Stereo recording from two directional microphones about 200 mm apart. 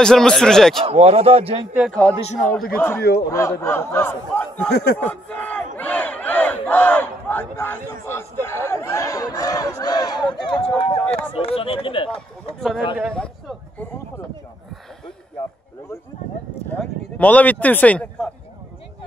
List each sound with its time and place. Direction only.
0.0 s speech: 5° left (ahead or behind)
0.8 s a man's voice: 30° right (ahead or behind)
1.7 s speech: 5° right (ahead or behind)
2.0 s a man's voice: 5° left (ahead or behind)
3.0 s speech: 55° left (ahead or behind)
3.3 s a man's voice: 15° left (ahead or behind)
4.6 s speech: 55° left (ahead or behind)
4.9 s speech: 5° left (ahead or behind)
5.8 s battle cry: 10° left (ahead or behind)
11.3 s speech: 30° left (ahead or behind)
12.1 s speech: 5° left (ahead or behind)
13.1 s a sound: 5° left (ahead or behind)
16.7 s a sound: 5° left (ahead or behind)